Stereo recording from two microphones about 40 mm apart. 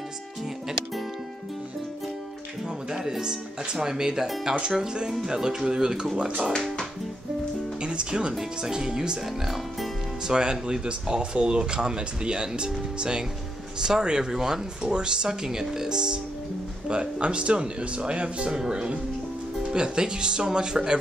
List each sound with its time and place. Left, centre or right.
2.9 s speech: centre
6.5 s music: centre
7.8 s speech: right
10.2 s speech: centre